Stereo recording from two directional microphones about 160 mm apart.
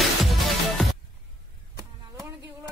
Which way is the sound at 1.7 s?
20° right (ahead or behind).